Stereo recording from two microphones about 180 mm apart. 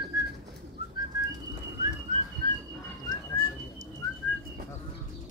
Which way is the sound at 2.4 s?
50° right (ahead or behind).